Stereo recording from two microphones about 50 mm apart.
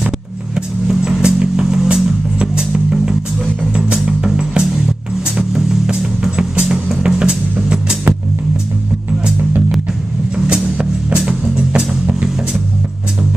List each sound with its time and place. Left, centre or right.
0.8 s music: centre
10.3 s music: centre